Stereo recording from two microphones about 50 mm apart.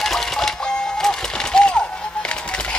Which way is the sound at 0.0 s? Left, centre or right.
Centre.